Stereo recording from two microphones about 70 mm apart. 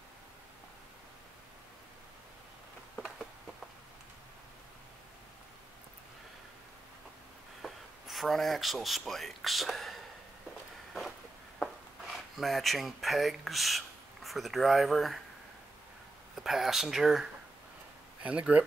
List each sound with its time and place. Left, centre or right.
7.6 s speech: centre
10.9 s a sound: centre
12.1 s speech: centre
16.3 s speech: centre
18.2 s speech: centre